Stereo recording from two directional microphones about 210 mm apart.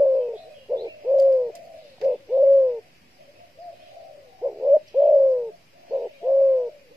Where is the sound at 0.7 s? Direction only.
20° right (ahead or behind).